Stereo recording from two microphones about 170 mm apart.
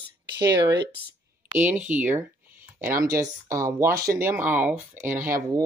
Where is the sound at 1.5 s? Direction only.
10° right (ahead or behind).